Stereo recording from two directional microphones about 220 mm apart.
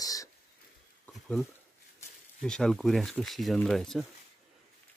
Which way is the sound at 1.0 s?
Centre (ahead or behind).